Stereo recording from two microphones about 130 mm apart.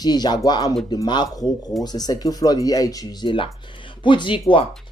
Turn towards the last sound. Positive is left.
turn(degrees=40)  # may be behind; listen again after turning